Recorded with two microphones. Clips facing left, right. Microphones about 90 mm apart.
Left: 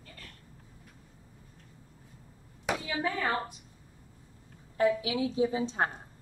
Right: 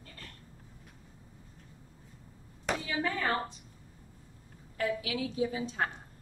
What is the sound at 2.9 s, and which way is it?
Speech, 10° left (ahead or behind).